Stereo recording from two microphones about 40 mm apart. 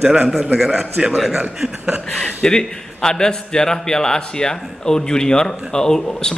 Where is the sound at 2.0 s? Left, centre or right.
Left.